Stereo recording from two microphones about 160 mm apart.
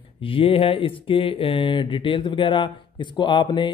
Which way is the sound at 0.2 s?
35° left (ahead or behind).